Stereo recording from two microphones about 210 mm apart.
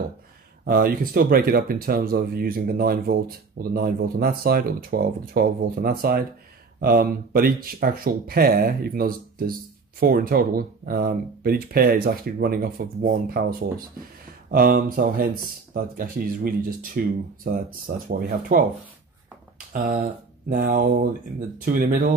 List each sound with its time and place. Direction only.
0.7 s speech: 45° right (ahead or behind)
19.7 s speech: 40° right (ahead or behind)